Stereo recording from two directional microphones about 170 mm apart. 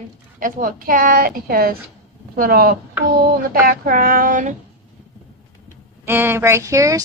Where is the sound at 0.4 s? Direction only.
55° right (ahead or behind).